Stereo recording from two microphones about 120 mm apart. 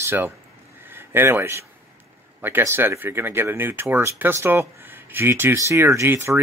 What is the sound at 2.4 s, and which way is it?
Speech, 20° right (ahead or behind).